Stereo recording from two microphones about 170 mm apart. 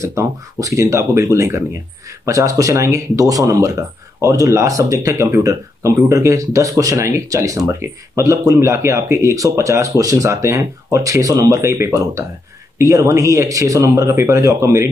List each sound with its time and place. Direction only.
0.0 s speech: 15° right (ahead or behind)